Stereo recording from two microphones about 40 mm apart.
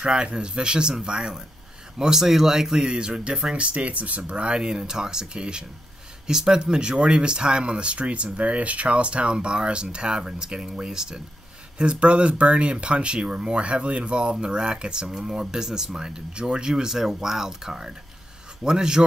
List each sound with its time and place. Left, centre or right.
0.0 s speech: right
2.9 s speech: right
11.8 s speech: right